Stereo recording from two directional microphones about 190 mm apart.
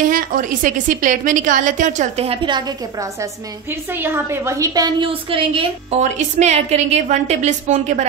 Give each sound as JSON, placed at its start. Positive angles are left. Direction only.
{"t": 0.1, "sound": "a woman's voice", "side_deg": -45}